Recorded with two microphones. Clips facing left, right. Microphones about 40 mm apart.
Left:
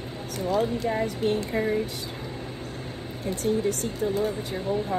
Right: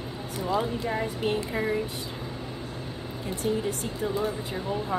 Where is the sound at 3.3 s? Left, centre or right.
Left.